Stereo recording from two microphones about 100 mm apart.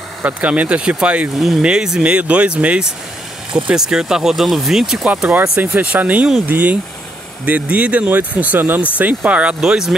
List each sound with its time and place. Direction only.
0.2 s speech: 15° right (ahead or behind)